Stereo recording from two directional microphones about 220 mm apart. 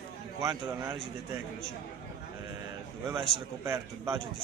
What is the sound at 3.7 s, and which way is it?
Speech, 15° right (ahead or behind).